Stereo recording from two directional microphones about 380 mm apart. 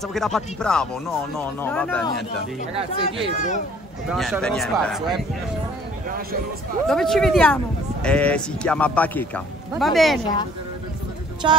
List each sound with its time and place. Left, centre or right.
0.1 s speech: centre
3.3 s speech: centre
4.1 s speech: centre
6.9 s speech: centre
11.4 s music: centre